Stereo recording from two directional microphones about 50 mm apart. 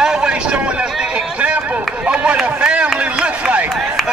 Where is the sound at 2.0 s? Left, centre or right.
Right.